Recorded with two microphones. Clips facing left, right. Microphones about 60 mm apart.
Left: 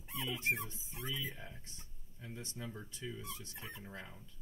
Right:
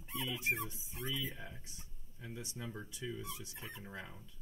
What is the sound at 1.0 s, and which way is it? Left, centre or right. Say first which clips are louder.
Speech: right 1 dB; centre.